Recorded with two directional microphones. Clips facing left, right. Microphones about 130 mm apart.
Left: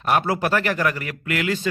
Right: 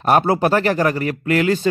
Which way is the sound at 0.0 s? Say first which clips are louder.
Right 5 dB; 30° right (ahead or behind).